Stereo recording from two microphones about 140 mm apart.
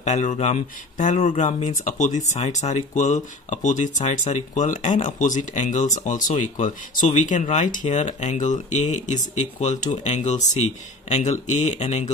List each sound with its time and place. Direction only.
0.0 s speech: 60° left (ahead or behind)